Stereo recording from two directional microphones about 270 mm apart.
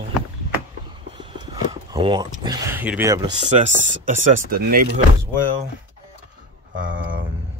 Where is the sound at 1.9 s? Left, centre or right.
Centre.